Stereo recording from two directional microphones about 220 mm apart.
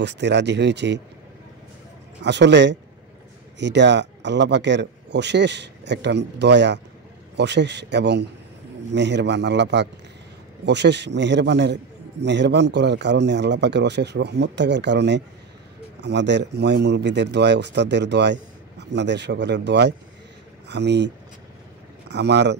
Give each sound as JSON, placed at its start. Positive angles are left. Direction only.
{"t": 0.0, "sound": "a man's voice", "side_deg": -50}
{"t": 2.2, "sound": "a man's voice", "side_deg": -50}